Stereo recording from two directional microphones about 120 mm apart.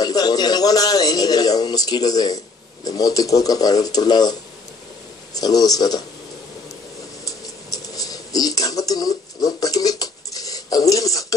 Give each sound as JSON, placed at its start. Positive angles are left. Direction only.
{"t": 0.0, "sound": "a man's voice", "side_deg": 30}
{"t": 5.4, "sound": "a man's voice", "side_deg": 30}
{"t": 7.2, "sound": "a sound", "side_deg": 30}